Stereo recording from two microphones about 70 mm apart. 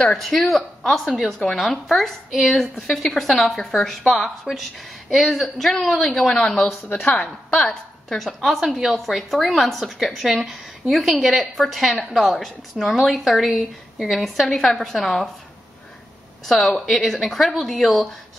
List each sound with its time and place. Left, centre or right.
0.2 s a woman's voice: centre
6.9 s speech: left
7.6 s a woman's voice: centre
16.4 s a woman's voice: centre